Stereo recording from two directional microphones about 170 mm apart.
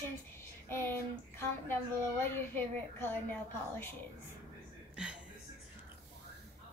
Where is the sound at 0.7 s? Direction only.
15° left (ahead or behind).